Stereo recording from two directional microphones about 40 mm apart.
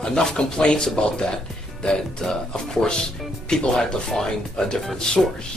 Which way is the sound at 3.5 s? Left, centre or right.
Centre.